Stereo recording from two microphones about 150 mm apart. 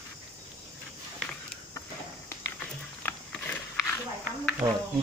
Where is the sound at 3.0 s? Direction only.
15° left (ahead or behind).